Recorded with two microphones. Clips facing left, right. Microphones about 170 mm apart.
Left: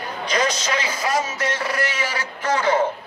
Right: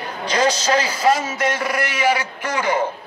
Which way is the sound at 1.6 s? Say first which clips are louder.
Right 2 dB; 15° right (ahead or behind).